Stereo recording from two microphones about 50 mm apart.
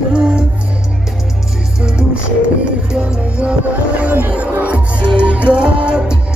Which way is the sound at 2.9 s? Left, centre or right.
Centre.